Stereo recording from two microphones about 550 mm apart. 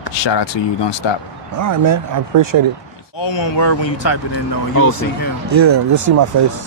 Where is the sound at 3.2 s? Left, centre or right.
Left.